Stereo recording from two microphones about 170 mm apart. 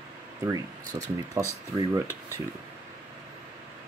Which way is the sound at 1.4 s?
20° right (ahead or behind).